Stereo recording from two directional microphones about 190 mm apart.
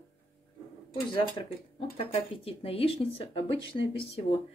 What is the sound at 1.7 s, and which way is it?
Speech, 30° left (ahead or behind).